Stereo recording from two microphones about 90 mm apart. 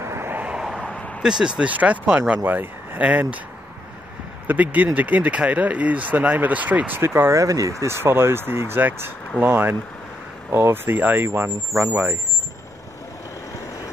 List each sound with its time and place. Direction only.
0.0 s vehicle: 25° right (ahead or behind); by 0.8 s 5° right (ahead or behind)
0.8 s a sound: 10° left (ahead or behind)
1.4 s speech: 10° right (ahead or behind)
4.5 s speech: 20° right (ahead or behind)
7.0 s speech: 25° right (ahead or behind)